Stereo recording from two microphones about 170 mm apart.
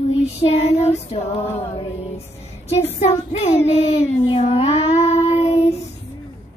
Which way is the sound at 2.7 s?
40° left (ahead or behind).